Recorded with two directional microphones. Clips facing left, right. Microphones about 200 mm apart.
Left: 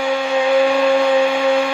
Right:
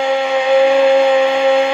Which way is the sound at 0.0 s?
20° right (ahead or behind).